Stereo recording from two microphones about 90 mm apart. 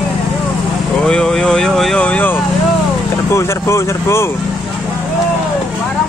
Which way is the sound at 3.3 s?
30° left (ahead or behind).